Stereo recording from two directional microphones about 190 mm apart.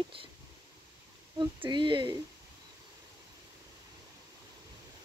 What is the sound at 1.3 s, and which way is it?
Speech, 25° right (ahead or behind).